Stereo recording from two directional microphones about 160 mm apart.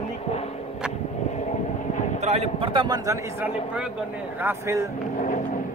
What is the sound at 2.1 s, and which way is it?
A man's voice, 45° right (ahead or behind).